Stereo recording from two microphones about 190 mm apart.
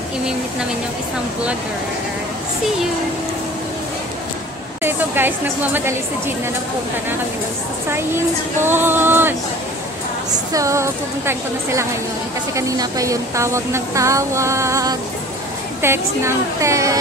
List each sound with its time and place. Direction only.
4.8 s a woman's voice: 10° right (ahead or behind)
7.9 s a woman's voice: 10° right (ahead or behind)
10.5 s a woman's voice: 15° right (ahead or behind)